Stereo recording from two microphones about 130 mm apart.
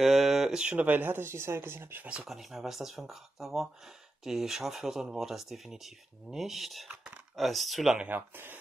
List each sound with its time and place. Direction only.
0.0 s speech: centre (ahead or behind)
8.1 s speech: 15° right (ahead or behind)